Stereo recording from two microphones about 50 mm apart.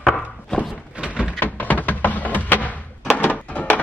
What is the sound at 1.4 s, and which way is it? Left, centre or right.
Music, left.